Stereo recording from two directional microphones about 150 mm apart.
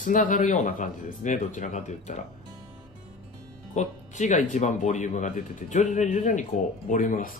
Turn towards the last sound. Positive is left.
turn(degrees=60)  # may be behind; listen again after turning